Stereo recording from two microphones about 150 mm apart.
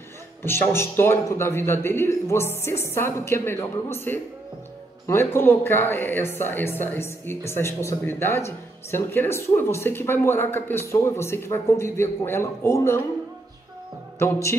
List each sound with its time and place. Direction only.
0.4 s speech: 15° left (ahead or behind)
14.1 s music: 15° left (ahead or behind)